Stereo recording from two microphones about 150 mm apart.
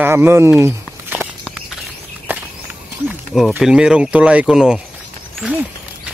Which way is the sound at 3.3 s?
Centre (ahead or behind).